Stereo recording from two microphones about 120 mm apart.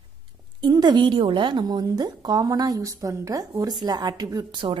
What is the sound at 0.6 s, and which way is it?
Speech, 35° right (ahead or behind).